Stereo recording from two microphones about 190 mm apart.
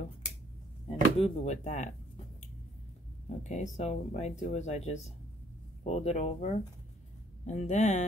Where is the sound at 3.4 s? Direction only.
40° left (ahead or behind).